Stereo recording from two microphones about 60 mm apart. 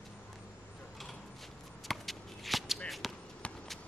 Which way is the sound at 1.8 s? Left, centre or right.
Centre.